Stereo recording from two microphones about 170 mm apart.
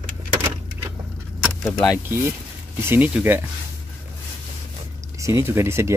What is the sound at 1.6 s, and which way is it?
Speech, 20° left (ahead or behind).